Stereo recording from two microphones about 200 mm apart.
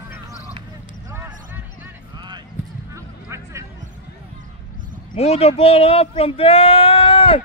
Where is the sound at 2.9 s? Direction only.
15° right (ahead or behind).